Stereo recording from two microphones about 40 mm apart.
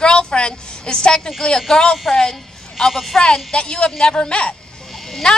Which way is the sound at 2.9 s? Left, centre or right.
Centre.